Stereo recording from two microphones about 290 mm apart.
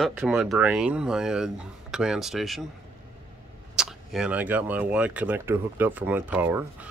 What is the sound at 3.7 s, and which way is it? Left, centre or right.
Speech, centre.